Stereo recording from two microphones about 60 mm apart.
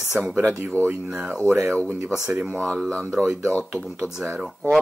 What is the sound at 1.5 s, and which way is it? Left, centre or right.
Speech, right.